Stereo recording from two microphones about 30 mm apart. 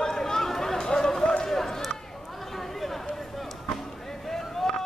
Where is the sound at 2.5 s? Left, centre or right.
Centre.